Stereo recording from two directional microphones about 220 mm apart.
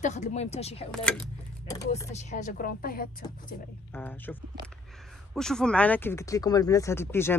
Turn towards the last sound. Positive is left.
turn(degrees=10)  # may be behind; listen again after turning